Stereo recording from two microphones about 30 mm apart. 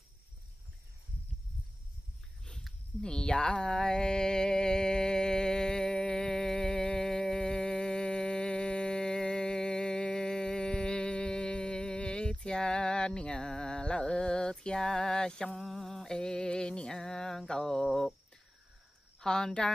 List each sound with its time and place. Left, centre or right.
3.0 s mantra: left
15.6 s mantra: centre
16.1 s music: left
17.5 s a sound: centre
17.8 s cricket: centre
19.1 s speech: left